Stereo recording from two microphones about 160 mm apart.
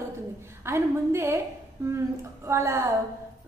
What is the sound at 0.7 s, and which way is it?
Speech, 15° right (ahead or behind).